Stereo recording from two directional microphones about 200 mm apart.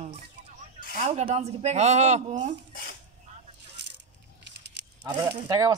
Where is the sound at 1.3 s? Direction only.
35° right (ahead or behind).